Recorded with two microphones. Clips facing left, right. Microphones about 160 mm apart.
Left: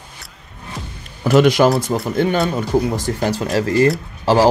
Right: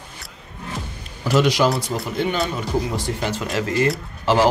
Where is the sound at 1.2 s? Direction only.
55° left (ahead or behind).